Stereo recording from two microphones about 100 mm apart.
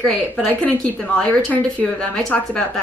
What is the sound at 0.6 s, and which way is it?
A woman's voice, 15° left (ahead or behind).